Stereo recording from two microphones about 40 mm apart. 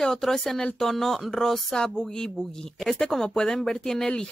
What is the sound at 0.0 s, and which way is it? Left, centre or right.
Speech, centre.